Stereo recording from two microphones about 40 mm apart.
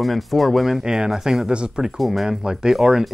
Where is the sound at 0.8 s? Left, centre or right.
Centre.